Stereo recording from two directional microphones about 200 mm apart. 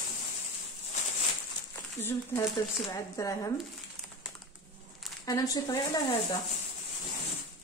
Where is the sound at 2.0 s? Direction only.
10° left (ahead or behind).